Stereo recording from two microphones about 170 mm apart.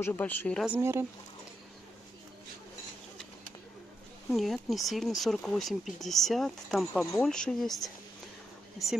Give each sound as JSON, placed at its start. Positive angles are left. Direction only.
{"t": 0.0, "sound": "speech", "side_deg": 10}
{"t": 0.7, "sound": "speech", "side_deg": -15}
{"t": 4.3, "sound": "speech", "side_deg": 0}